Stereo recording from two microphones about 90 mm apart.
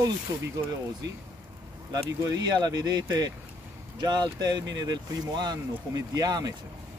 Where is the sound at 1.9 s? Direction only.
45° right (ahead or behind).